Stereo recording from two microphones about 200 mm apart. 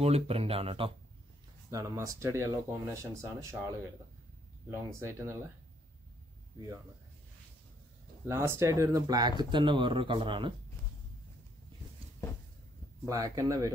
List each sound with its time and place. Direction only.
0.0 s speech: 30° right (ahead or behind)
1.7 s speech: 15° right (ahead or behind)
4.6 s speech: 15° right (ahead or behind)
8.3 s speech: 15° right (ahead or behind)
13.0 s speech: 15° right (ahead or behind)